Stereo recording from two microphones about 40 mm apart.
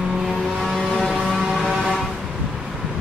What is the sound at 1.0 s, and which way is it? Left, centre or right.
Vehicle, centre.